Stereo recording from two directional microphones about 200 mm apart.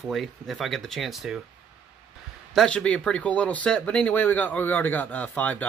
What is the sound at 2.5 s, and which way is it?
Speech, 5° left (ahead or behind).